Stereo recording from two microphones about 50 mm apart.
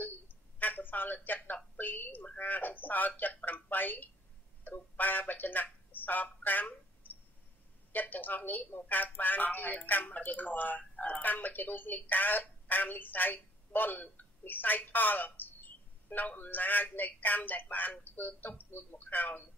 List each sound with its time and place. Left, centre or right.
0.6 s a woman's voice: left